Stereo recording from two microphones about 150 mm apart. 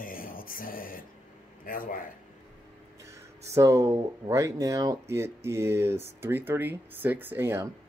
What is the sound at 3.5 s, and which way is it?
Speech, 20° right (ahead or behind).